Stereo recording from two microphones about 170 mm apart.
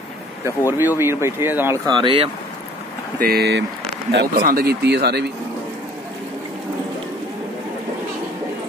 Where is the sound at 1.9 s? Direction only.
30° right (ahead or behind).